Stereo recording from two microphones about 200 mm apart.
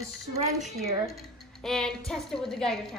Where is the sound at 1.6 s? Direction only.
5° left (ahead or behind).